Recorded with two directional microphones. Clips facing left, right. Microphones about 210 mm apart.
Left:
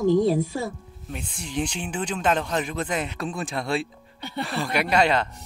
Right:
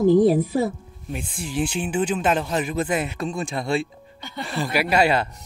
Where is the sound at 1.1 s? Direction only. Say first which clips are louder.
Right 4 dB; 5° right (ahead or behind).